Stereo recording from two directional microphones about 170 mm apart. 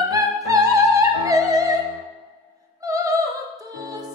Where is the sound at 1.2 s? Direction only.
20° right (ahead or behind).